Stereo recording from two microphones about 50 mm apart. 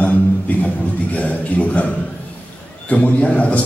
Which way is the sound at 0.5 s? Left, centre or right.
Left.